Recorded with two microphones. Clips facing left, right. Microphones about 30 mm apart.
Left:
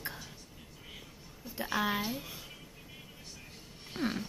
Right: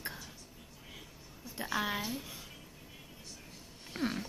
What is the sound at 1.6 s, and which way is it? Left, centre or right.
Speech, centre.